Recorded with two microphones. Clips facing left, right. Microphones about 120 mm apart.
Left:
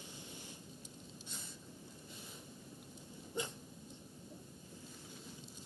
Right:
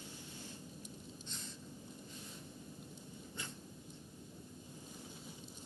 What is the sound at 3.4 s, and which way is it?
Dog, 15° left (ahead or behind).